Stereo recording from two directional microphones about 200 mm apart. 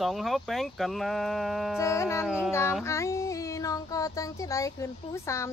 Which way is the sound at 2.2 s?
5° right (ahead or behind).